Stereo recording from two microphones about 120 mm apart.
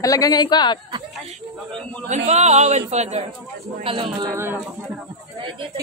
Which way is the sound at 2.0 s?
75° right (ahead or behind).